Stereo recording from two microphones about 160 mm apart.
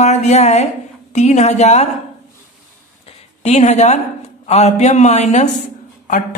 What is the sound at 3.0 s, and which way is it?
A man's voice, 45° left (ahead or behind).